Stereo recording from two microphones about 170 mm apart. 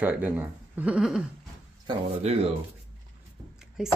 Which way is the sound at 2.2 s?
35° right (ahead or behind).